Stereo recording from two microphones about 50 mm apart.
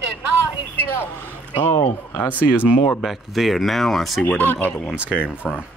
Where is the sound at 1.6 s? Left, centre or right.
Left.